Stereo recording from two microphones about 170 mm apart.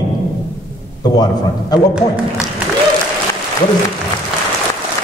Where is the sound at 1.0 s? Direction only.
25° left (ahead or behind).